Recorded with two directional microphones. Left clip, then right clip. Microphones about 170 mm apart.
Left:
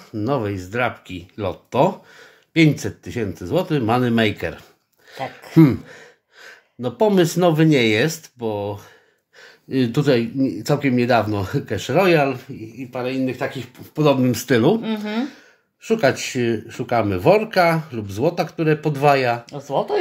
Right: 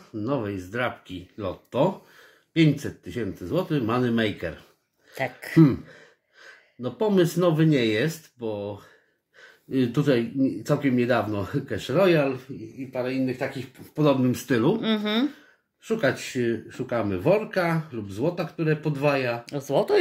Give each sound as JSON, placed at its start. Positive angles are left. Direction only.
{"t": 0.2, "sound": "speech", "side_deg": 45}
{"t": 5.1, "sound": "speech", "side_deg": -30}
{"t": 5.5, "sound": "speech", "side_deg": 45}
{"t": 14.8, "sound": "speech", "side_deg": -35}
{"t": 15.8, "sound": "speech", "side_deg": 40}
{"t": 19.5, "sound": "speech", "side_deg": -35}